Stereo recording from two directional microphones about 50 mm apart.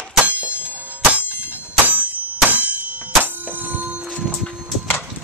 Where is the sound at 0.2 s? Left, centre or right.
Right.